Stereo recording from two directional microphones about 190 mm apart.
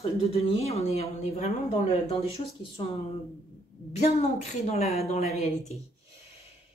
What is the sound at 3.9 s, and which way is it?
A woman's voice, 35° left (ahead or behind).